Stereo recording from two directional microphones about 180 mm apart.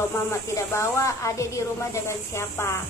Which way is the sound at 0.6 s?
15° left (ahead or behind).